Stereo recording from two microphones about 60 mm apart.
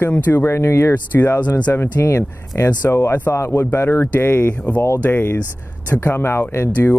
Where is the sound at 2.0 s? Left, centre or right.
Left.